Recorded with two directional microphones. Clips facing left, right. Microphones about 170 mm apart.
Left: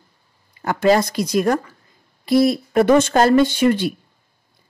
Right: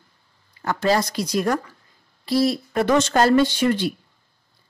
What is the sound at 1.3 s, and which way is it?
Speech, 20° left (ahead or behind).